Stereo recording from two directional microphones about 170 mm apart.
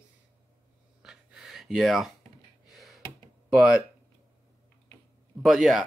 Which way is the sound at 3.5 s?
5° right (ahead or behind).